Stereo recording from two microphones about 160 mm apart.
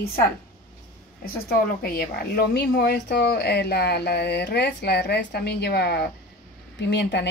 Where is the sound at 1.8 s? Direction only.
75° left (ahead or behind).